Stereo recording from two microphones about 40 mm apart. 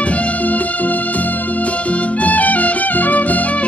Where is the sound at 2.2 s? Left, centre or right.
Left.